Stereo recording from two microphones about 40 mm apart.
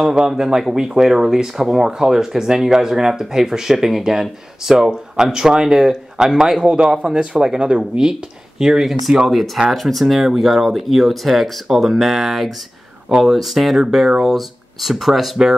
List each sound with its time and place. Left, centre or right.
0.0 s speech: centre
8.6 s speech: centre